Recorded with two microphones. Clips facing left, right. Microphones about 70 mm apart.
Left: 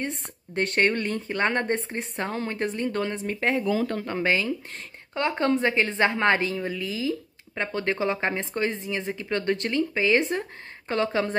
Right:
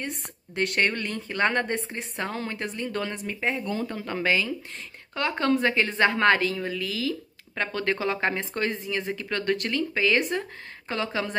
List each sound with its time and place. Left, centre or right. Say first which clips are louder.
0.6 s a woman's voice: left 2 dB; left
3.3 s speech: left 4 dB; left
4.0 s a woman's voice: left 1 dB; left